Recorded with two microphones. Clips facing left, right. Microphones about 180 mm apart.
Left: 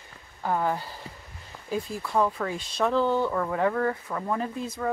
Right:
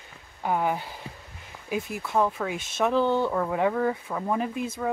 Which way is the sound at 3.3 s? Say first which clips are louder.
Right 1 dB; 10° right (ahead or behind).